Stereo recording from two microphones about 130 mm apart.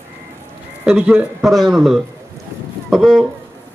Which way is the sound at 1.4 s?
Centre (ahead or behind).